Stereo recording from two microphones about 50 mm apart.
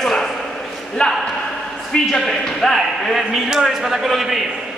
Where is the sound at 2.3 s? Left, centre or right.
Centre.